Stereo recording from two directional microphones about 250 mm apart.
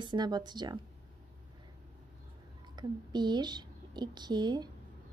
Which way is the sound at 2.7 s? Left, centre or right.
Centre.